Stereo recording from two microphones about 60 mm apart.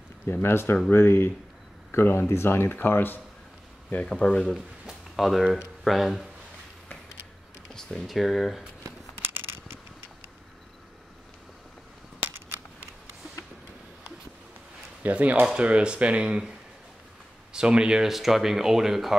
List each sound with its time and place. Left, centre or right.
0.3 s speech: left
4.1 s speech: centre
4.8 s a sound: centre
5.9 s speech: centre
7.7 s speech: centre
12.2 s crushing: right
15.0 s speech: right; by 19.1 s centre